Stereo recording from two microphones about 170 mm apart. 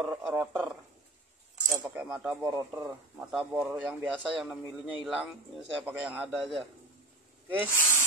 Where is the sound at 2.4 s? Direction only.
20° right (ahead or behind).